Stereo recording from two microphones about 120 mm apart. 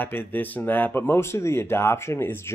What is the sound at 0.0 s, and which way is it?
Speech, 15° left (ahead or behind).